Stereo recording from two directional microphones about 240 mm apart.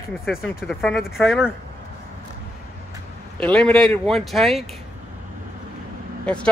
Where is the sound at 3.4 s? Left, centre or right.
Centre.